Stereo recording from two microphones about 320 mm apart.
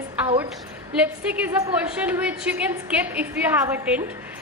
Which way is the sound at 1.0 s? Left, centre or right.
Centre.